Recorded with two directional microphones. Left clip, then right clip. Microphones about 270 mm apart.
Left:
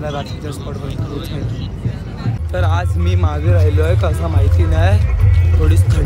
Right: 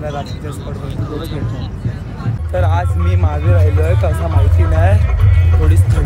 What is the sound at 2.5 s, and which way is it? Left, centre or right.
Speech, centre.